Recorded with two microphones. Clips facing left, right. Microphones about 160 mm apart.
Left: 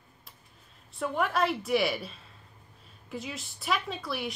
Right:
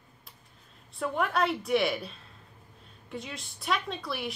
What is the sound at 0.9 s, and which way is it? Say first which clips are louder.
Speech: even; centre (ahead or behind).